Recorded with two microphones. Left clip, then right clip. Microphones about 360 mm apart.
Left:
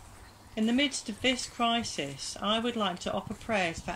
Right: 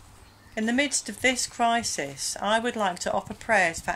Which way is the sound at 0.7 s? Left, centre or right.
Centre.